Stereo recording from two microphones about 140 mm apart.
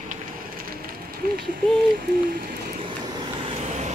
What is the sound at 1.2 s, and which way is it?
Speech, 90° right.